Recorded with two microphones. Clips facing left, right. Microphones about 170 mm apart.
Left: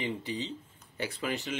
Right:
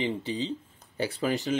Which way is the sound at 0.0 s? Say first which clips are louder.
Right 5 dB; 30° right (ahead or behind).